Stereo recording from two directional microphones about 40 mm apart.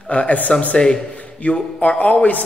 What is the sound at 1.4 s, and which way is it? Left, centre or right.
Speech, left.